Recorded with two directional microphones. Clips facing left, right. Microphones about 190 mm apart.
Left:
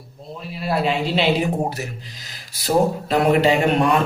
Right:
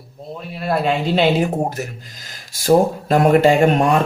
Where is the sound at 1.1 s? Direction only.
45° right (ahead or behind).